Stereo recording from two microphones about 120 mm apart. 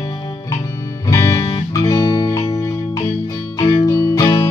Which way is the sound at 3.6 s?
45° left (ahead or behind).